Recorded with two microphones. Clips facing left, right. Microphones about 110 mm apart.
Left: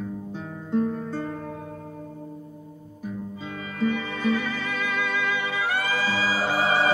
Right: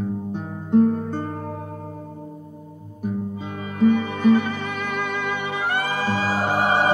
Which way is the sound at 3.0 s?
50° right (ahead or behind).